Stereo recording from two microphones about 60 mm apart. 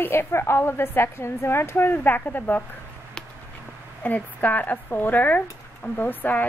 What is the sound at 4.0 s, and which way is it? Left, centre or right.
Speech, left.